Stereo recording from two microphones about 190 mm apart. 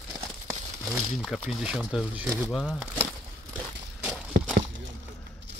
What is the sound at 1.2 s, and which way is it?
Speech, centre (ahead or behind).